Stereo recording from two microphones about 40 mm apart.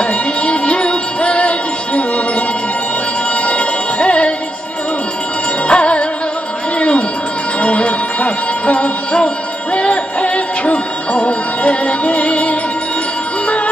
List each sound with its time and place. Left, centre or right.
0.0 s music: left
3.4 s music: left
5.7 s music: left
6.8 s a sound: left
7.6 s music: left